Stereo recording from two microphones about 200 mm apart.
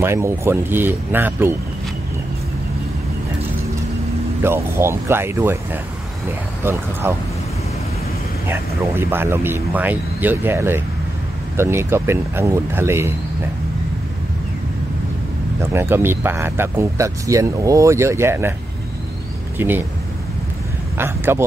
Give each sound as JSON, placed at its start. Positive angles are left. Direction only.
{"t": 0.0, "sound": "speech", "side_deg": -15}
{"t": 4.4, "sound": "speech", "side_deg": -10}
{"t": 6.6, "sound": "speech", "side_deg": -10}
{"t": 8.5, "sound": "speech", "side_deg": -10}
{"t": 15.6, "sound": "speech", "side_deg": -10}
{"t": 19.6, "sound": "speech", "side_deg": -10}
{"t": 21.0, "sound": "speech", "side_deg": -10}